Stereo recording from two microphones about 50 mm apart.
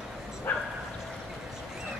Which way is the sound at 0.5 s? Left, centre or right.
Left.